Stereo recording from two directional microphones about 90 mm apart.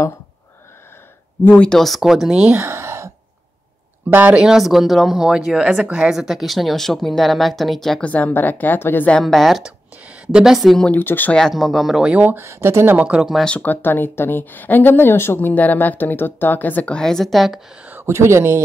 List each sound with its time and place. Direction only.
1.6 s speech: 5° left (ahead or behind); by 2.6 s 10° right (ahead or behind)
2.6 s a sound: 30° right (ahead or behind)
4.1 s speech: 15° right (ahead or behind); by 8.0 s centre (ahead or behind)
8.0 s speech: 15° left (ahead or behind)
9.1 s speech: 5° left (ahead or behind)
10.9 s speech: 20° left (ahead or behind)
11.3 s speech: 5° left (ahead or behind)
12.1 s speech: 15° right (ahead or behind)
12.4 s speech: 30° right (ahead or behind)
13.4 s speech: 15° left (ahead or behind)
17.8 s speech: 25° right (ahead or behind)